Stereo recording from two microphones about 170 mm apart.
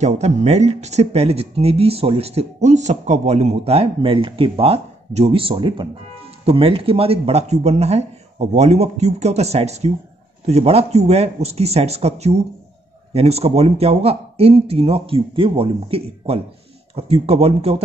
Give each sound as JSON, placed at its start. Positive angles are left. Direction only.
{"t": 0.0, "sound": "speech", "side_deg": -40}